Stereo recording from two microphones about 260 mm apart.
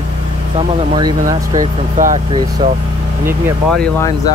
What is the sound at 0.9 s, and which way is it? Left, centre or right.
Speech, centre.